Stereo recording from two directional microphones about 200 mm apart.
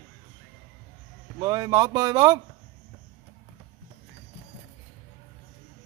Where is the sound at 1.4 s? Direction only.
20° right (ahead or behind).